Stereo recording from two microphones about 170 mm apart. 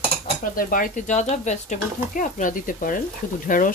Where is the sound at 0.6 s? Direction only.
55° left (ahead or behind).